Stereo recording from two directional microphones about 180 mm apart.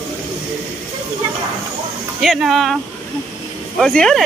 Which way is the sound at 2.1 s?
Centre (ahead or behind).